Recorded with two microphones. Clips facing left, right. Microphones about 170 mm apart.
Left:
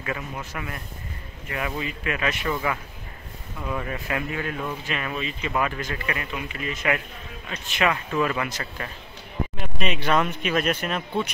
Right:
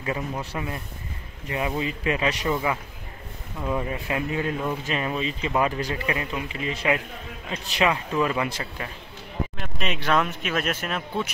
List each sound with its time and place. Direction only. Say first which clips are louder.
0.0 s a man's voice: right 3 dB; 30° right (ahead or behind)
8.1 s speech: right 1 dB; 10° right (ahead or behind)
9.6 s speech: left 5 dB; centre (ahead or behind)